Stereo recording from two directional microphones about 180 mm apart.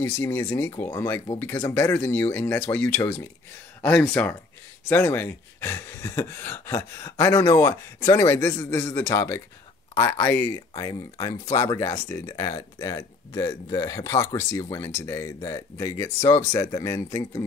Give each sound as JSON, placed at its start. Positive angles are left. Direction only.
{"t": 0.0, "sound": "speech", "side_deg": 15}